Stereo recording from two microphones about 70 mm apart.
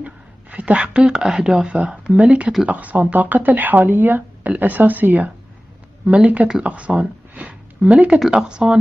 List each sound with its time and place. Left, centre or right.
0.0 s speech: centre